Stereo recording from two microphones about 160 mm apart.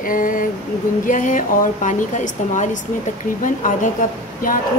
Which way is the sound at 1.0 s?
55° left (ahead or behind).